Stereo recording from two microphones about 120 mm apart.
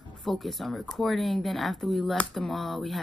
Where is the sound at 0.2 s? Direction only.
Centre (ahead or behind).